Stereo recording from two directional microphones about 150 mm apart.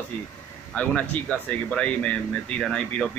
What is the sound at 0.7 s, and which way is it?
Speech, 5° left (ahead or behind).